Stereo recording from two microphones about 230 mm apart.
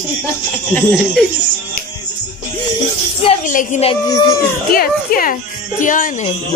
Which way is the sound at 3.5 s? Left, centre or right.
Left.